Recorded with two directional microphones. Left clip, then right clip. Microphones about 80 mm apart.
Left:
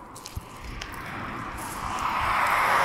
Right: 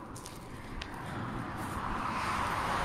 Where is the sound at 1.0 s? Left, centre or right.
Left.